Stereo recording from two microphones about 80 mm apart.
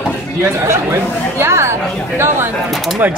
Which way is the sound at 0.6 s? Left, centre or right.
Right.